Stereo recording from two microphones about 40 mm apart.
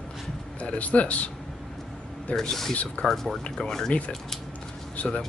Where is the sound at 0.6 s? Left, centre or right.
Left.